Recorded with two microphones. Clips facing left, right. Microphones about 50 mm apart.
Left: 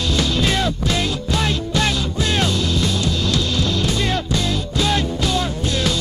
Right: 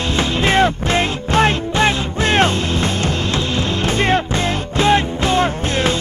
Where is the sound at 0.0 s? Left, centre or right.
Right.